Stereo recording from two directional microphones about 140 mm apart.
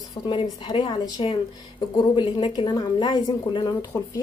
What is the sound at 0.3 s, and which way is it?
Speech, 35° left (ahead or behind).